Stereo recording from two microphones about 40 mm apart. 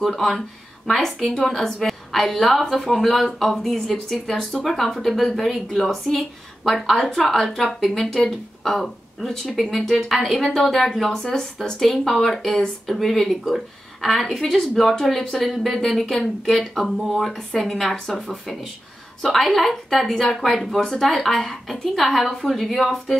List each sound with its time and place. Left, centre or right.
0.0 s a woman's voice: centre
7.6 s a woman's voice: centre
20.8 s a woman's voice: centre